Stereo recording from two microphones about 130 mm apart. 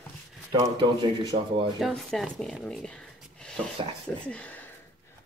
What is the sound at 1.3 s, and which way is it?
Speech, 45° right (ahead or behind).